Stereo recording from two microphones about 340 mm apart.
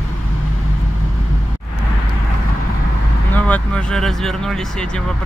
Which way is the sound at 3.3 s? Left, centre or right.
Centre.